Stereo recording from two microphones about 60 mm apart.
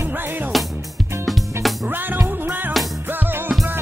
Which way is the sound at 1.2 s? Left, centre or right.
Centre.